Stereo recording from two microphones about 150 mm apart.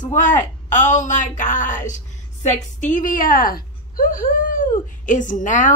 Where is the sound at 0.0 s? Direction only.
55° left (ahead or behind).